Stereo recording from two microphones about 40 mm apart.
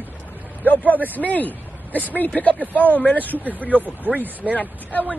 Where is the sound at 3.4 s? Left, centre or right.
Right.